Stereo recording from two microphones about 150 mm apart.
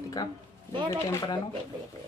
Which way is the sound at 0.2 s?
25° left (ahead or behind).